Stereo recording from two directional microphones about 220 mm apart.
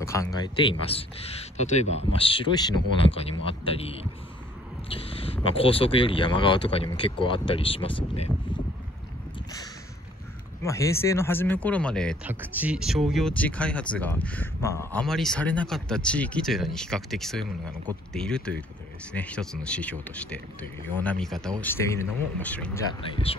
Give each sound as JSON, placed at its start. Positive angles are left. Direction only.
{"t": 0.0, "sound": "speech", "side_deg": 15}
{"t": 10.6, "sound": "speech", "side_deg": 15}
{"t": 12.3, "sound": "speech", "side_deg": -10}